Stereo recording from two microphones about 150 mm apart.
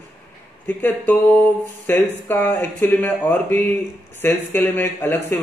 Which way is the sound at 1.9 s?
15° left (ahead or behind).